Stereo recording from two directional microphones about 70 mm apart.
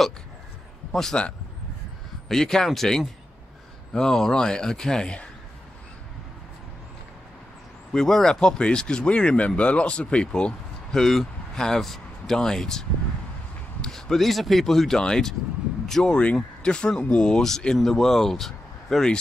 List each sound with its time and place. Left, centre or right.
0.9 s speech: centre
7.9 s speech: centre